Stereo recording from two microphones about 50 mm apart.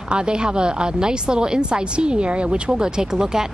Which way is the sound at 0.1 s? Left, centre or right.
Centre.